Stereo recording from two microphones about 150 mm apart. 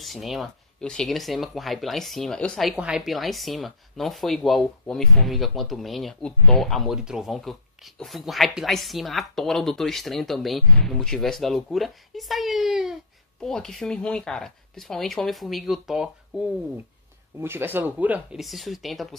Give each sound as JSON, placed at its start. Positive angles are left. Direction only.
{"t": 0.0, "sound": "speech", "side_deg": 0}
{"t": 17.4, "sound": "speech", "side_deg": -15}